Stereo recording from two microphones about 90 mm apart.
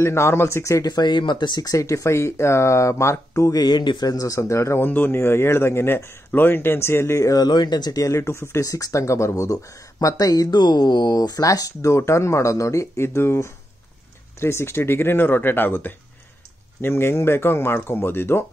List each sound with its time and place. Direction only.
0.0 s speech: 30° left (ahead or behind)
0.8 s speech: 55° left (ahead or behind)
4.1 s speech: 40° left (ahead or behind)
4.8 s speech: 20° left (ahead or behind)